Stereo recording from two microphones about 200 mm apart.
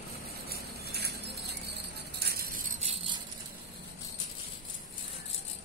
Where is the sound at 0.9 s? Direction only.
55° right (ahead or behind); by 3.2 s 30° right (ahead or behind).